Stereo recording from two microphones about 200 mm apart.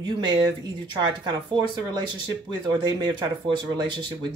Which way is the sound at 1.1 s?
20° right (ahead or behind).